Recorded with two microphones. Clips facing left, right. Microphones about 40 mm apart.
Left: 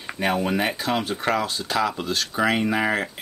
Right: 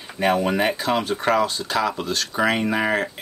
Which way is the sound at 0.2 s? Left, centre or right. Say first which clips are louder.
Right 3 dB; centre.